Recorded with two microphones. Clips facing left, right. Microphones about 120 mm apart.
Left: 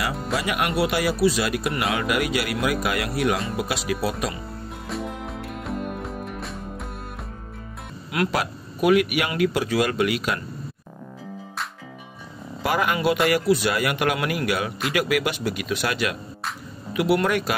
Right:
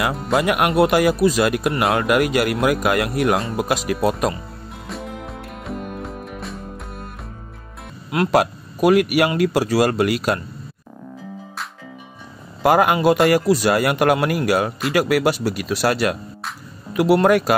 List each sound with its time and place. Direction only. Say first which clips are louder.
0.0 s speech: right 7 dB; 55° right (ahead or behind)
4.8 s music: even; centre (ahead or behind)
8.3 s speech: right 9 dB; 45° right (ahead or behind)
12.6 s speech: right 7 dB; 45° right (ahead or behind)